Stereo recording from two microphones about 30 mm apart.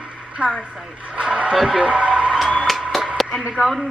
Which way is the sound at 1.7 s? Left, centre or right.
Right.